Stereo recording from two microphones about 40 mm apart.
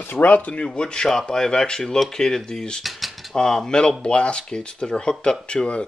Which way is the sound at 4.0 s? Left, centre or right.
Left.